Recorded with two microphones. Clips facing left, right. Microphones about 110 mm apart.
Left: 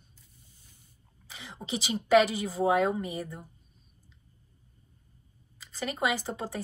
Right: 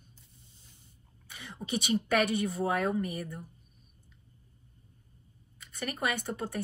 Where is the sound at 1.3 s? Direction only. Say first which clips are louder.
Even; 25° left (ahead or behind).